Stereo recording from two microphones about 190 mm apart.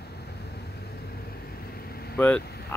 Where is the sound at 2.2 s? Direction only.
10° left (ahead or behind).